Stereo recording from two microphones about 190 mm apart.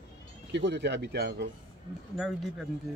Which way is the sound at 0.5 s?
65° right (ahead or behind).